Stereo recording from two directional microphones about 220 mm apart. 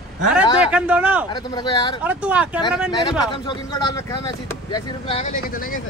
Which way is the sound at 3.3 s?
20° left (ahead or behind).